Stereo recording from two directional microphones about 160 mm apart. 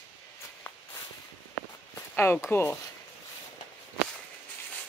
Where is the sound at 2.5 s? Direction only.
15° left (ahead or behind).